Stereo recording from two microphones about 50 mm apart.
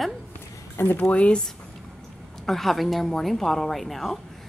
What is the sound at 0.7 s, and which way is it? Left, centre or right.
Speech, left.